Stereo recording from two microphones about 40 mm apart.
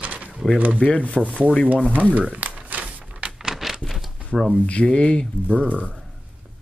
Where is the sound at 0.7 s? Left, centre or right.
Left.